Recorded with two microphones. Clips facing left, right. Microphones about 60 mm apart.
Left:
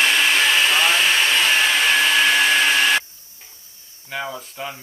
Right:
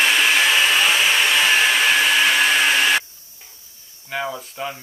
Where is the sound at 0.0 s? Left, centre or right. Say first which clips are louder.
Right 1 dB; centre.